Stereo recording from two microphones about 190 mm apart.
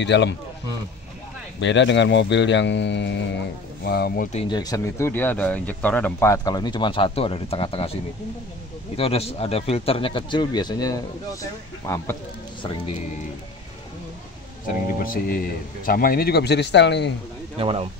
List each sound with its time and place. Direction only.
0.0 s speech: 65° left (ahead or behind)
1.6 s speech: 70° left (ahead or behind)
3.8 s speech: 55° left (ahead or behind)
4.4 s speech: 20° left (ahead or behind)
8.9 s speech: 30° left (ahead or behind); by 12.2 s 15° left (ahead or behind)
15.2 s a man's voice: 50° left (ahead or behind); by 17.1 s 65° left (ahead or behind)
17.6 s speech: 30° right (ahead or behind)